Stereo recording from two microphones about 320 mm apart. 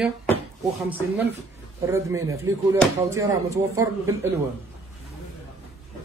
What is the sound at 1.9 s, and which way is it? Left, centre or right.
A man's voice, centre.